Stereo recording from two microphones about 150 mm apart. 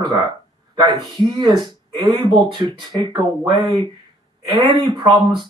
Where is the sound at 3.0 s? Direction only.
30° right (ahead or behind).